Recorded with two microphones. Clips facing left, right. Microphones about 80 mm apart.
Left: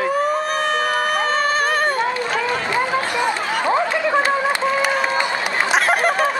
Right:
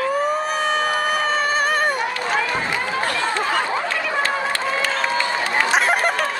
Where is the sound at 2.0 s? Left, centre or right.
Left.